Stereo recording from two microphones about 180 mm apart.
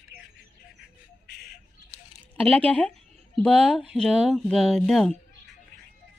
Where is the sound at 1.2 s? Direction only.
60° left (ahead or behind).